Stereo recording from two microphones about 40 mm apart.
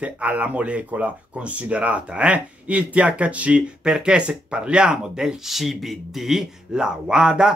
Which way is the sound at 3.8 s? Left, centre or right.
Centre.